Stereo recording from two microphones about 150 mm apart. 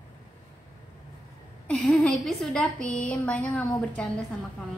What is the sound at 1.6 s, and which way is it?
A woman's voice, 5° left (ahead or behind).